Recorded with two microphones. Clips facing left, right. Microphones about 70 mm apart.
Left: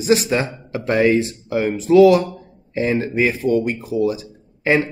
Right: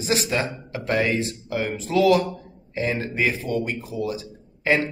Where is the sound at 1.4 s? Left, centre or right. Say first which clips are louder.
Left 7 dB; left.